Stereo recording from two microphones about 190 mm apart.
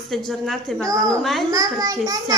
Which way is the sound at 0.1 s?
Centre (ahead or behind).